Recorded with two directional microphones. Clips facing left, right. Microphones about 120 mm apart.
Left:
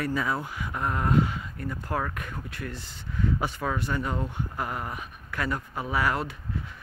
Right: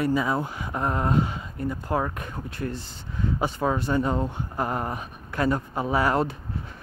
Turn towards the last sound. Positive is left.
turn(degrees=-30)  # may be behind; listen again after turning